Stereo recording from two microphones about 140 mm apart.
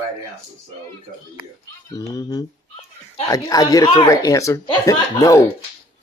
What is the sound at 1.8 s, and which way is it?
Speech, 25° left (ahead or behind).